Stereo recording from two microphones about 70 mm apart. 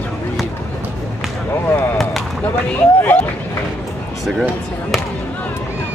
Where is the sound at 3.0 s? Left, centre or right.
Left.